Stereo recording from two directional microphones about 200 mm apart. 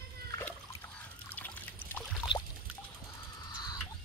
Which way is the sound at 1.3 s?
10° left (ahead or behind).